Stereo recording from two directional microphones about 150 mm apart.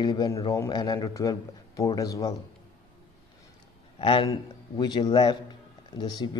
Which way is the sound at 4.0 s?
35° left (ahead or behind).